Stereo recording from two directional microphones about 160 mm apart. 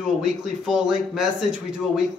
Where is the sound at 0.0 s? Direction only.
5° right (ahead or behind).